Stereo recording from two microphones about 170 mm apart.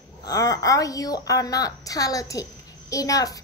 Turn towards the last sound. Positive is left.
turn(degrees=20)  # may be behind; listen again after turning